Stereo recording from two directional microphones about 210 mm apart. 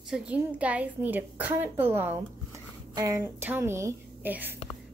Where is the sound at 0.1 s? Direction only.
5° right (ahead or behind).